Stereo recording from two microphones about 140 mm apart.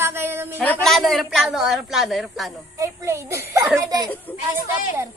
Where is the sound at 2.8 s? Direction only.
20° right (ahead or behind).